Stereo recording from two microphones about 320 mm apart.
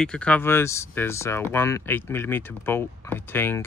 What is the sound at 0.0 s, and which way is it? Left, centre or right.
Speech, centre.